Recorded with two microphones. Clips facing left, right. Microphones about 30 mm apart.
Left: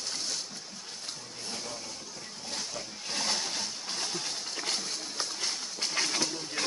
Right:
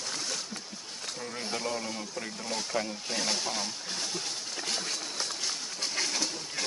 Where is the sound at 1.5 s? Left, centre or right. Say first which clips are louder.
Right 8 dB; right.